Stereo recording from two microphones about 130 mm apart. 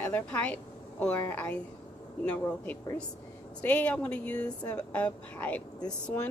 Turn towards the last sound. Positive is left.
turn(degrees=10)  # may be behind; listen again after turning